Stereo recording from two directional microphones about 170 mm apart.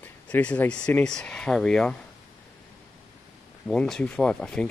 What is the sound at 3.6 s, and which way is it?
Speech, centre (ahead or behind).